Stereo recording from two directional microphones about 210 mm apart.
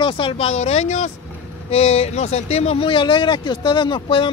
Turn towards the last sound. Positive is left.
turn(degrees=25)  # may be behind; listen again after turning